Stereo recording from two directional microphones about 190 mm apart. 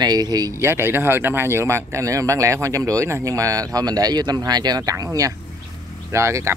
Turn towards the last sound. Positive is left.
turn(degrees=-15)  # may be behind; listen again after turning